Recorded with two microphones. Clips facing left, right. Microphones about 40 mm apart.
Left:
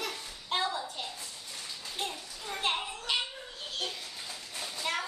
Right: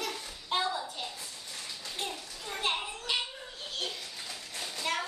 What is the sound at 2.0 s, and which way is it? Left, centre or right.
Children playing, centre.